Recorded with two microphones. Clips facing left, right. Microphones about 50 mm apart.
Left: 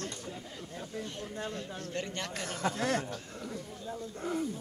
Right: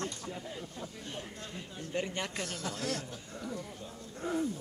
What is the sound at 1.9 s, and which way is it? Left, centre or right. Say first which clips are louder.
Speech: right 3 dB; centre.